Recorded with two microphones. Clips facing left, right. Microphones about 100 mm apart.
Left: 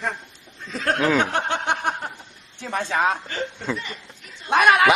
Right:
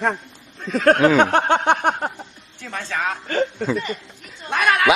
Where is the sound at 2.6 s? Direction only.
20° left (ahead or behind).